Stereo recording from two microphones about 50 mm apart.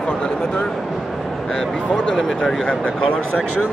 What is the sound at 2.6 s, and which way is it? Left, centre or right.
Speech, left.